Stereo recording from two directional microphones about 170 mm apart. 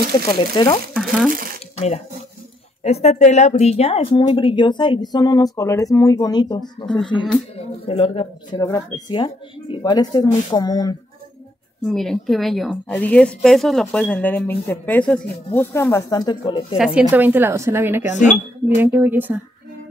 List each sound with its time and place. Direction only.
0.3 s speech: 25° left (ahead or behind)
0.9 s speech: 5° right (ahead or behind)
2.8 s speech: 40° left (ahead or behind)
8.5 s speech: 20° left (ahead or behind)
11.8 s a woman's voice: centre (ahead or behind); by 16.6 s 25° left (ahead or behind)
16.7 s a woman's voice: 5° right (ahead or behind)